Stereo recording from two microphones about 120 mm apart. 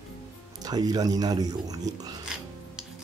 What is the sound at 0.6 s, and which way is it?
Speech, 35° right (ahead or behind).